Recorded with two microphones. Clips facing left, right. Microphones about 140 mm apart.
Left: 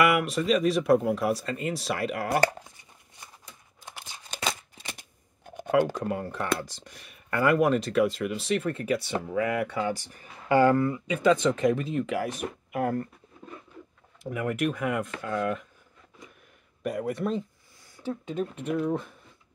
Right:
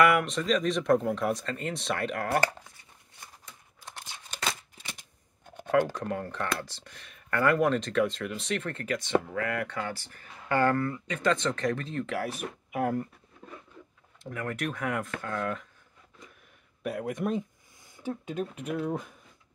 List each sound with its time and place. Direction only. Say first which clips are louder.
0.0 s speech: even; 5° left (ahead or behind)
5.4 s a sound: left 2 dB; 10° left (ahead or behind)
6.0 s speech: left 3 dB; 10° left (ahead or behind); by 13.1 s 5° right (ahead or behind)
14.2 s speech: left 5 dB; 10° left (ahead or behind)
16.8 s speech: left 2 dB; 5° right (ahead or behind)